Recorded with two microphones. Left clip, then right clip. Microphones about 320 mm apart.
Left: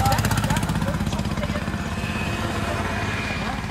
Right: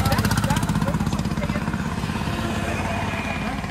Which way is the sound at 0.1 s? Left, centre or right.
Centre.